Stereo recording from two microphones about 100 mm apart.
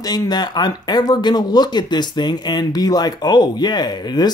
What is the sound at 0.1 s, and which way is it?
Speech, 45° left (ahead or behind).